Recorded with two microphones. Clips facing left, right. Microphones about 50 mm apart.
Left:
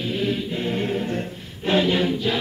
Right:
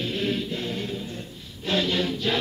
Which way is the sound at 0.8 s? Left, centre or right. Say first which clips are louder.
Left 8 dB; left.